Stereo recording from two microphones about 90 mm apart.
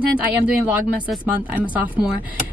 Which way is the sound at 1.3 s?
20° right (ahead or behind).